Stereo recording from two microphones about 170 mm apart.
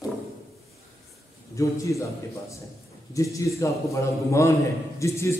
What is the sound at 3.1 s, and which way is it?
A man's voice, 20° left (ahead or behind).